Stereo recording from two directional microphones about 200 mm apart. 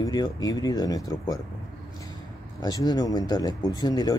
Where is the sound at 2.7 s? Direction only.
20° left (ahead or behind).